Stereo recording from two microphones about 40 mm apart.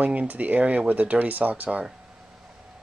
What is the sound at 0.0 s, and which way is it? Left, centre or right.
Speech, right.